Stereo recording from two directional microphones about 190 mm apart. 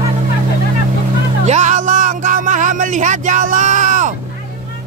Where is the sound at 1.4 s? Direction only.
40° right (ahead or behind).